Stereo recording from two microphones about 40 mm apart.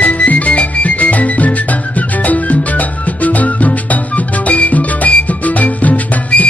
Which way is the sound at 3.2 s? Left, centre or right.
Left.